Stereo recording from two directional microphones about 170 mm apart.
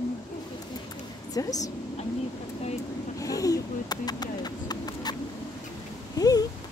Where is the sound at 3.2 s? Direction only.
20° left (ahead or behind).